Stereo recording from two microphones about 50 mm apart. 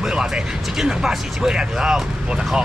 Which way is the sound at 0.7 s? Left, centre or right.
Centre.